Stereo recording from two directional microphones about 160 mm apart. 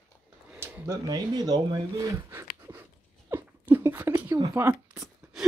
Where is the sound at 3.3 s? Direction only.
10° right (ahead or behind).